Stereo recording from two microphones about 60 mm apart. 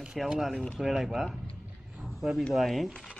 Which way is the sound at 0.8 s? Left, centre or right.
Centre.